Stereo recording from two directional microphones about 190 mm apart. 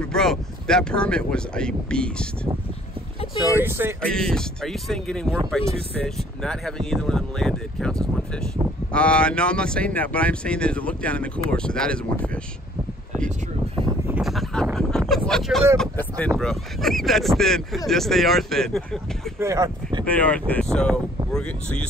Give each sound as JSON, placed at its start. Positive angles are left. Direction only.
{"t": 0.0, "sound": "speech", "side_deg": 5}
{"t": 3.5, "sound": "speech", "side_deg": -10}
{"t": 4.1, "sound": "speech", "side_deg": 5}
{"t": 14.0, "sound": "a sound", "side_deg": -5}
{"t": 15.8, "sound": "speech", "side_deg": 5}
{"t": 19.4, "sound": "speech", "side_deg": -15}
{"t": 20.1, "sound": "speech", "side_deg": 5}